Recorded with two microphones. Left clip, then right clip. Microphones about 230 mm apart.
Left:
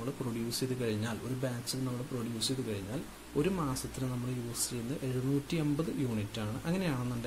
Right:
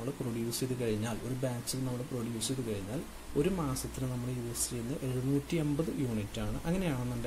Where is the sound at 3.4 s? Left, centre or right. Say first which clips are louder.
Even; centre.